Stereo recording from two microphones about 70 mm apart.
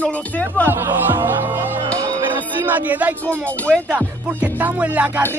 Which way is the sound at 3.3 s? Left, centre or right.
Centre.